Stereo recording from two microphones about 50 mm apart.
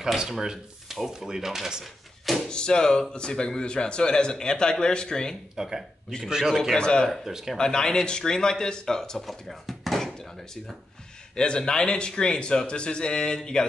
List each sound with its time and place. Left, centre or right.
0.0 s speech: centre
2.5 s speech: centre
5.6 s speech: centre
6.7 s speech: centre
7.1 s speech: centre
7.5 s speech: centre
9.2 s drawer open or close: centre
11.3 s speech: centre